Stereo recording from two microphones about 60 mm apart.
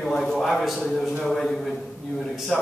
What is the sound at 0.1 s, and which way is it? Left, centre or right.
A man's voice, centre.